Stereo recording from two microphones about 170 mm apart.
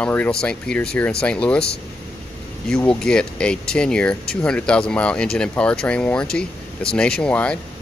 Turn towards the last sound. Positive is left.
turn(degrees=5)  # may be behind; listen again after turning